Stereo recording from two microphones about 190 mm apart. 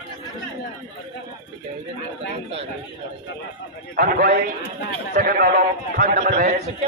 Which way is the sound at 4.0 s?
50° right (ahead or behind).